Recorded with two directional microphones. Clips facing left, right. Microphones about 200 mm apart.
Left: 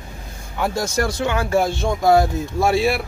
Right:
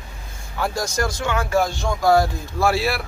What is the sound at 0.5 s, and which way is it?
Speech, 25° left (ahead or behind).